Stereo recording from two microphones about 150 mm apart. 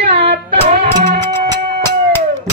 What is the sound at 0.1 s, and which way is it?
Music, 40° right (ahead or behind).